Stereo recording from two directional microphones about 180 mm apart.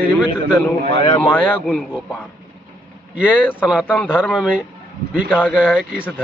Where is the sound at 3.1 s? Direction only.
5° right (ahead or behind).